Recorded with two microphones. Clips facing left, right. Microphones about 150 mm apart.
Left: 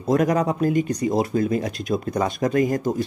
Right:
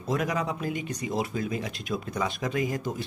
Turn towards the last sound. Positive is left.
turn(degrees=45)  # may be behind; listen again after turning